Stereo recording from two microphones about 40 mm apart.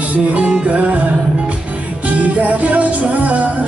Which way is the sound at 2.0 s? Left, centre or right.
Right.